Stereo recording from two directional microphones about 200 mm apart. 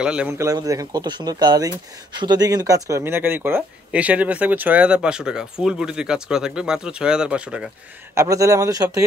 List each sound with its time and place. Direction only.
0.0 s speech: 5° right (ahead or behind)